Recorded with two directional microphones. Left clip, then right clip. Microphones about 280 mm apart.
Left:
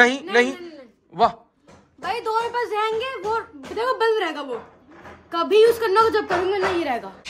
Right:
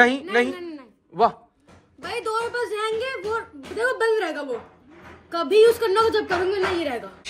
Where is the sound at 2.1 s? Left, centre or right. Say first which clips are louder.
Left 3 dB; centre.